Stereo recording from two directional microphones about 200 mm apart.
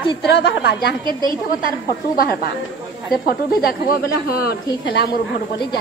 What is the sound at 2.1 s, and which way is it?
Speech, 45° left (ahead or behind).